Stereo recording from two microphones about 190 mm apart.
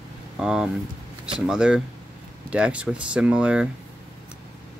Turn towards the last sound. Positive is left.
turn(degrees=-5)  # may be behind; listen again after turning